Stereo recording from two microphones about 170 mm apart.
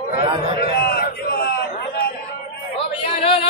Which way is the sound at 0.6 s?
65° left (ahead or behind).